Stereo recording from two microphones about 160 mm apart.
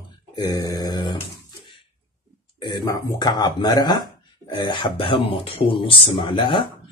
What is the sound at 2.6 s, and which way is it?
Speech, 25° left (ahead or behind).